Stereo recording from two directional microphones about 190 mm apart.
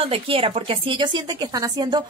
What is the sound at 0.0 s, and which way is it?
A woman's voice, 30° right (ahead or behind).